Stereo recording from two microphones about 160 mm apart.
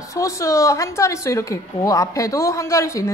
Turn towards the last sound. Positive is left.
turn(degrees=15)  # may be behind; listen again after turning